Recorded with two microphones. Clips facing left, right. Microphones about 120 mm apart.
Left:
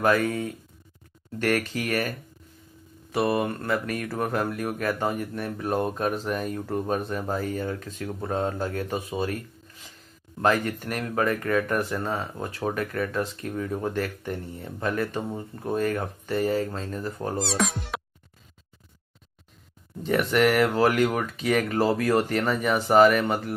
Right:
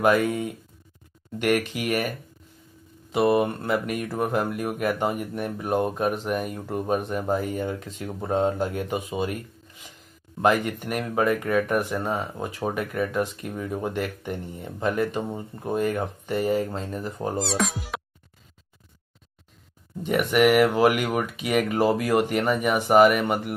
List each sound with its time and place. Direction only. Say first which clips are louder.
0.0 s speech: right 2 dB; 15° right (ahead or behind)
17.4 s speech: even; centre (ahead or behind)
20.0 s speech: right 1 dB; 15° right (ahead or behind)